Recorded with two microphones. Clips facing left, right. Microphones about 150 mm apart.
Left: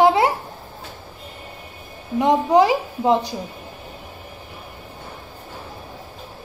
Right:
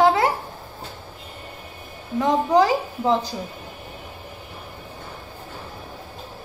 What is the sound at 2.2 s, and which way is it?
Speech, 20° left (ahead or behind).